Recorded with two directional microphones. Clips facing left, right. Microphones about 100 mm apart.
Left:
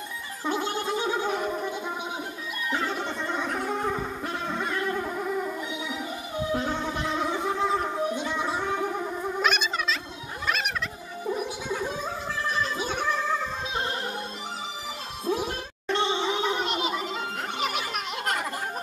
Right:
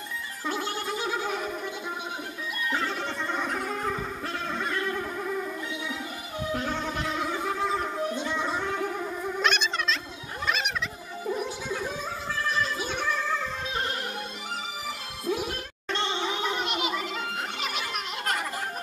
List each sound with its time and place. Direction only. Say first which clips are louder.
0.5 s gargling: left 3 dB; 20° left (ahead or behind)
2.7 s music: left 2 dB; 15° left (ahead or behind)
3.8 s a sound: left 2 dB; 15° left (ahead or behind)
4.7 s music: left 2 dB; 15° left (ahead or behind)
7.6 s music: left 3 dB; 5° left (ahead or behind)
9.4 s a sound: even; 5° left (ahead or behind)
11.2 s gargling: left 1 dB; 15° left (ahead or behind)
12.9 s music: left 3 dB; 15° left (ahead or behind)
15.2 s music: left 2 dB; 25° left (ahead or behind)
15.9 s gargling: left 4 dB; 15° left (ahead or behind)
16.6 s a sound: left 1 dB; 30° left (ahead or behind)
16.9 s music: left 1 dB; 25° left (ahead or behind)